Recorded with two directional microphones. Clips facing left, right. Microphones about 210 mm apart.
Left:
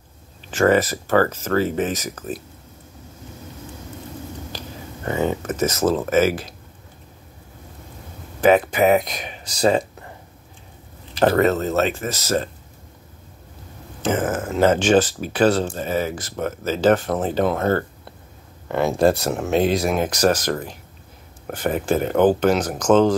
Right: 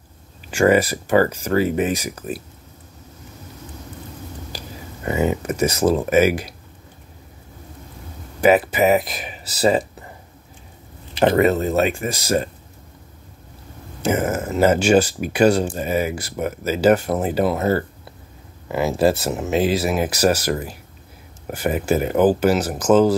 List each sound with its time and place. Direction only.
0.5 s speech: 10° right (ahead or behind)
4.5 s a sound: 10° right (ahead or behind)
5.0 s speech: 10° right (ahead or behind)
8.4 s speech: 5° right (ahead or behind)
11.2 s speech: 10° right (ahead or behind)
14.0 s speech: 10° right (ahead or behind)